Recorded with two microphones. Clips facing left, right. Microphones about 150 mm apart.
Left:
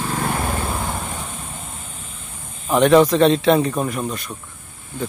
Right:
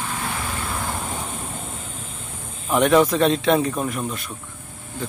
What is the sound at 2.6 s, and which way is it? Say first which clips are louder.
Speech: left 3 dB; centre (ahead or behind).